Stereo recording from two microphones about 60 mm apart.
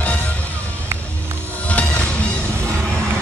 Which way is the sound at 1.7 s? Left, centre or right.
Left.